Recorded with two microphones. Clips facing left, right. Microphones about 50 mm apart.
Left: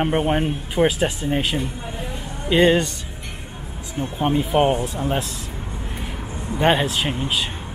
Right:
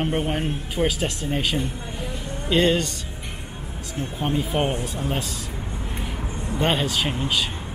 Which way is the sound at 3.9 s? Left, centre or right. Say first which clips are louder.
Left 4 dB; centre.